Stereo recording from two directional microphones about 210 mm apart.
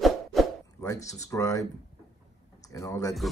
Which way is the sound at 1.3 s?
15° left (ahead or behind).